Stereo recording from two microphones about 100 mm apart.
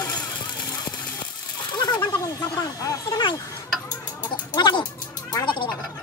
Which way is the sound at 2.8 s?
40° left (ahead or behind).